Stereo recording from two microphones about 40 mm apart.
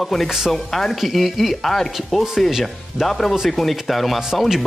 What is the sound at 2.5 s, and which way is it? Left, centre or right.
Speech, centre.